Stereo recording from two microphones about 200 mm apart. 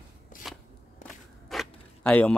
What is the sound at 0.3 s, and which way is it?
Shuffling cards, 40° left (ahead or behind).